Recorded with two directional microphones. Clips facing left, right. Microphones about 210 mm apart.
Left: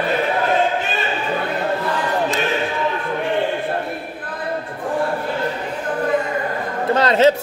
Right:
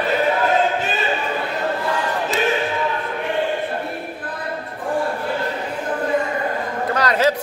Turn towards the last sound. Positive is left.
turn(degrees=25)  # may be behind; listen again after turning